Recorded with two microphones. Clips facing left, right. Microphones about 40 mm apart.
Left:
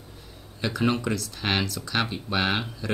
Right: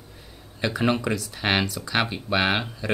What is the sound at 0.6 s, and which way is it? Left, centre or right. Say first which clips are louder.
Speech: right 2 dB; centre.